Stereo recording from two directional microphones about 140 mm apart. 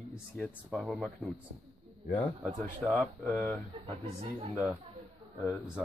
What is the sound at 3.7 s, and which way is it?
Speech, 40° right (ahead or behind).